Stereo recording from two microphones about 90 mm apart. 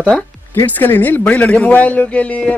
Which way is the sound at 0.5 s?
25° left (ahead or behind).